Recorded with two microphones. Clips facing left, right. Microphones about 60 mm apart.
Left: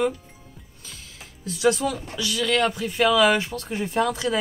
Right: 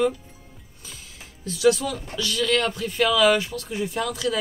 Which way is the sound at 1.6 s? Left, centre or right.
Left.